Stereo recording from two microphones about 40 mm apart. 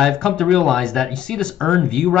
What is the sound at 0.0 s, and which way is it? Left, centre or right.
Speech, centre.